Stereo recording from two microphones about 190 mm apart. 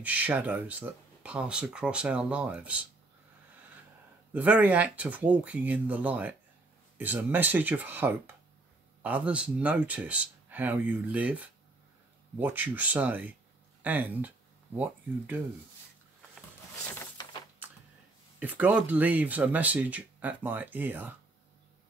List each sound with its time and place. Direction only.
0.0 s speech: 10° right (ahead or behind)
4.3 s speech: 10° right (ahead or behind)
16.8 s a sound: 10° left (ahead or behind)
17.2 s typewriter: 20° left (ahead or behind)
18.4 s speech: 10° right (ahead or behind)